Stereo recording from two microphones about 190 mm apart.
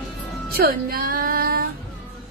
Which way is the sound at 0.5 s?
50° right (ahead or behind).